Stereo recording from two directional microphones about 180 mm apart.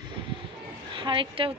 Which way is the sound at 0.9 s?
30° right (ahead or behind).